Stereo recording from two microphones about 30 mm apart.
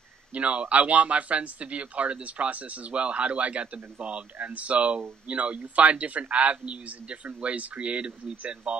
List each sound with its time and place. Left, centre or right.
0.3 s speech: right
6.5 s speech: right
7.4 s speech: right